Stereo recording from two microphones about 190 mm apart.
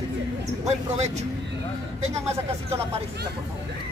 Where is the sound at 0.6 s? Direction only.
35° right (ahead or behind).